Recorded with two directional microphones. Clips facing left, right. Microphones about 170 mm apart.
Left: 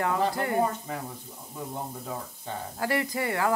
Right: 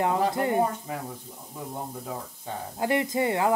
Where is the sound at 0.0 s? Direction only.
20° right (ahead or behind).